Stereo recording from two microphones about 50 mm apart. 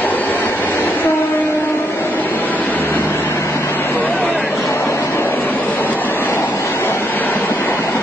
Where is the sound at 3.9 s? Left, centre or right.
Left.